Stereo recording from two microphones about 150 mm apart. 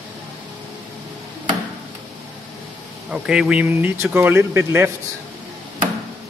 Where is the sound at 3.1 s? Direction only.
5° right (ahead or behind).